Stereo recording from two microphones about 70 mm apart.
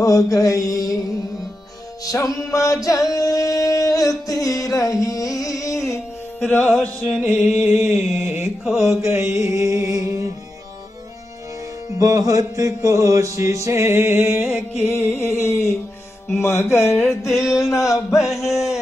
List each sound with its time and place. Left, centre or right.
0.3 s music: left
2.0 s music: left
5.0 s carnatic music: left
6.4 s music: left
7.2 s music: centre
9.0 s music: right
12.0 s chant: right
14.9 s a sound: left
17.2 s a sound: left
18.1 s a sound: centre